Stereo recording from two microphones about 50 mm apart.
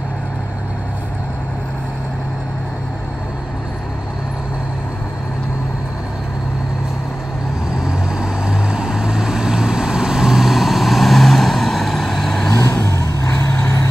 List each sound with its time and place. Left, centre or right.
7.8 s vehicle: centre
12.8 s vehicle: left